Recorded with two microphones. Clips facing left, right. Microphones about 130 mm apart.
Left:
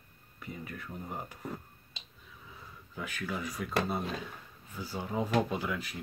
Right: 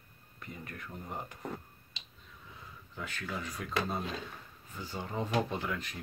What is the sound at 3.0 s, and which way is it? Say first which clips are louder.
Speech: left 3 dB; 5° left (ahead or behind).